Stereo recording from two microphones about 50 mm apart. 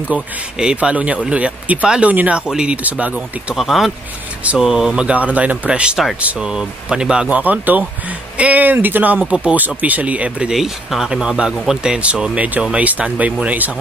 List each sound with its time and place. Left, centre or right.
0.7 s speech: right
2.8 s speech: right
3.5 s speech: centre; by 5.6 s right
5.7 s speech: centre
7.2 s speech: right
9.3 s speech: right
10.5 s speech: centre
11.8 s speech: centre